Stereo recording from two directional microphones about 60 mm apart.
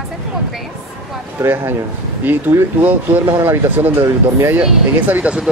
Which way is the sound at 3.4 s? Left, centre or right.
Right.